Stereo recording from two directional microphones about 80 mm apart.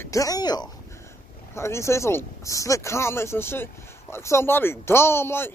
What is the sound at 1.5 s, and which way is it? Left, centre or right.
Speech, left.